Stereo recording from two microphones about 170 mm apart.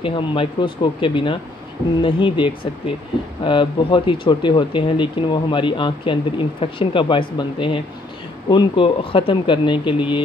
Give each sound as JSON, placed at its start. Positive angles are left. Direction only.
{"t": 0.0, "sound": "speech", "side_deg": 30}